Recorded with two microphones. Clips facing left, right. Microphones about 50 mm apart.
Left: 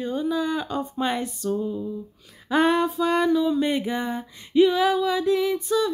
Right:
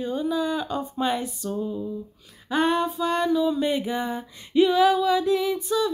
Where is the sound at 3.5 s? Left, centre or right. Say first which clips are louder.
Left 1 dB; left.